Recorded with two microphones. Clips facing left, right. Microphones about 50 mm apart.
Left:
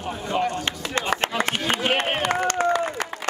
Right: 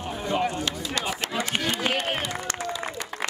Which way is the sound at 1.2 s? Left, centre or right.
Left.